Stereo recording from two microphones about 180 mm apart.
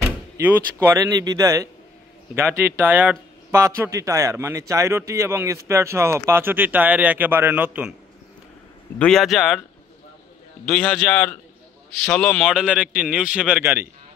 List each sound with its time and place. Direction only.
0.4 s speech: 10° right (ahead or behind)
8.9 s a man's voice: 5° left (ahead or behind)
10.6 s a man's voice: 5° left (ahead or behind)
12.4 s a man's voice: 5° right (ahead or behind)